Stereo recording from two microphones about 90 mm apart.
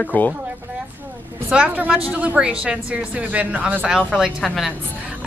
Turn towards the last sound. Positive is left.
turn(degrees=0)  # may be behind; listen again after turning